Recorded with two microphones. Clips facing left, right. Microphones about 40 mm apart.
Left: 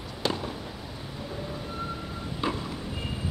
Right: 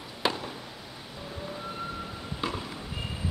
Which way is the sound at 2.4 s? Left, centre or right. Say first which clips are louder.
Left 3 dB; centre.